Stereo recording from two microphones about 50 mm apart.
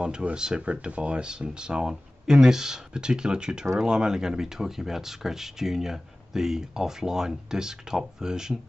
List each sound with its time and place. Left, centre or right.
0.0 s speech: centre